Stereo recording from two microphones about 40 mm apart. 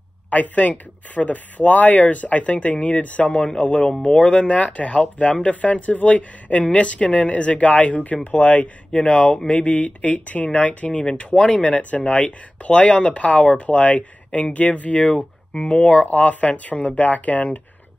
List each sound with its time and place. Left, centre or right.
0.3 s speech: left
3.3 s speech: centre
3.6 s speech: left
8.9 s speech: left
9.5 s speech: left
15.1 s speech: centre
15.7 s speech: left